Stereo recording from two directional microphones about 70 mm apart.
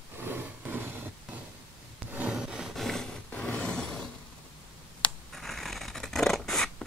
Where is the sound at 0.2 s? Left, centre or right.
Right.